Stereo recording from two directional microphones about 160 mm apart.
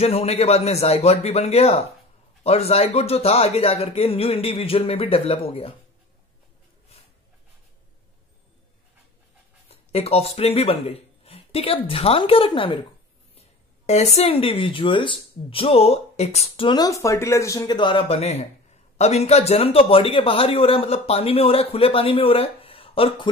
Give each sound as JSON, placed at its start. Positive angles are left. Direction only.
{"t": 0.0, "sound": "speech", "side_deg": 40}
{"t": 9.7, "sound": "speech", "side_deg": 40}